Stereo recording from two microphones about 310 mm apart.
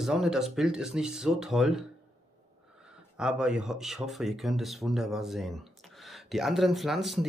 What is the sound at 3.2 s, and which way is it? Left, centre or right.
Speech, centre.